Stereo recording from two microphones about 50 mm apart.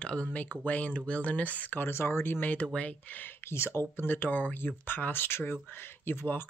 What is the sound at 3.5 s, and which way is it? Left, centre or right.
Speech, left.